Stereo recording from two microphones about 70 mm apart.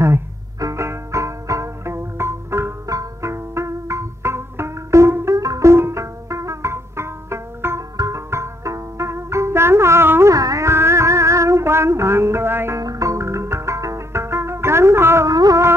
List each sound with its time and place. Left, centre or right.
0.6 s music: right
2.9 s music: right
10.3 s music: right
10.7 s music: right
12.7 s music: right
15.2 s music: right